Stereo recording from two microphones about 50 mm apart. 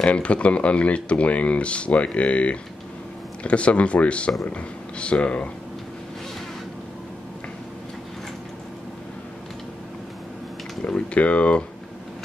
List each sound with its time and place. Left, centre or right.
0.0 s speech: left
10.8 s speech: left